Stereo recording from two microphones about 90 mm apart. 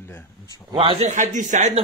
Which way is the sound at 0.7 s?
80° right.